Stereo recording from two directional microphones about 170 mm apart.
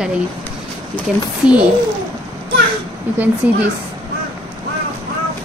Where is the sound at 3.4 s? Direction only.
10° right (ahead or behind).